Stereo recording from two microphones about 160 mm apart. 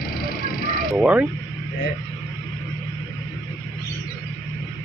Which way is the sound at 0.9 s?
5° right (ahead or behind).